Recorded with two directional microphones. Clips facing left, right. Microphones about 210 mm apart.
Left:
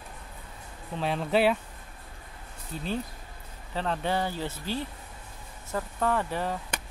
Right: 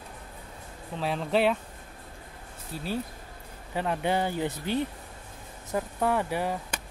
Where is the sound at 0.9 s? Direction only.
Centre (ahead or behind).